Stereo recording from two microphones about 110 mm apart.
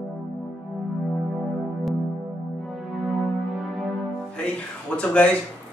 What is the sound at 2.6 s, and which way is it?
Music, centre (ahead or behind).